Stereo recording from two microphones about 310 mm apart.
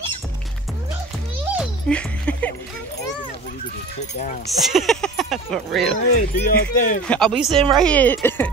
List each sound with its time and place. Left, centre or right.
1.5 s music: centre
4.5 s speech: centre
6.3 s speech: left
7.1 s speech: centre